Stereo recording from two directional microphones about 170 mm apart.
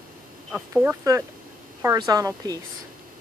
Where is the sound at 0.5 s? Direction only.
10° right (ahead or behind).